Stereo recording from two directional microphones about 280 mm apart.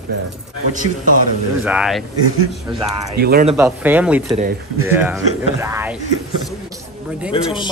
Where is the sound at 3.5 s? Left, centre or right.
Centre.